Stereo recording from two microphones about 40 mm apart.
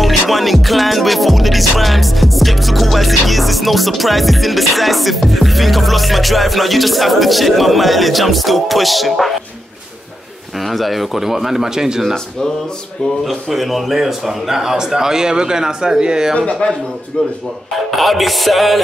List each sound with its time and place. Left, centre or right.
0.0 s music: centre
10.6 s speech: centre
13.2 s speech: centre
16.6 s a man's voice: left
17.9 s music: centre